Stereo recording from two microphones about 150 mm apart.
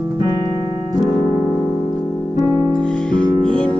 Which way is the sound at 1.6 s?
5° left (ahead or behind).